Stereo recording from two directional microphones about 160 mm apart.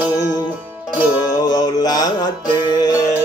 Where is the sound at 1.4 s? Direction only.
25° left (ahead or behind).